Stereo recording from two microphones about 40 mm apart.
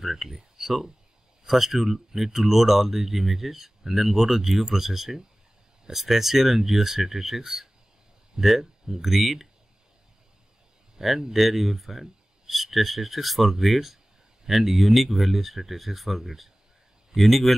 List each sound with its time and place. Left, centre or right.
0.0 s speech: centre
11.0 s speech: centre